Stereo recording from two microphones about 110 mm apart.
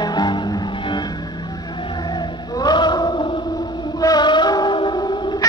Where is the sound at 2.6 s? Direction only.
40° left (ahead or behind).